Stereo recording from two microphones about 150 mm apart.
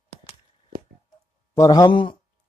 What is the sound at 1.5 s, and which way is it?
Speech, 25° left (ahead or behind).